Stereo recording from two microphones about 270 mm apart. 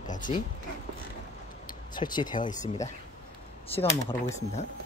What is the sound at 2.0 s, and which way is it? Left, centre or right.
Speech, centre.